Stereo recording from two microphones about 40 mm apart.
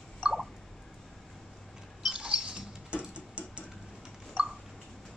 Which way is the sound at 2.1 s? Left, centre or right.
Right.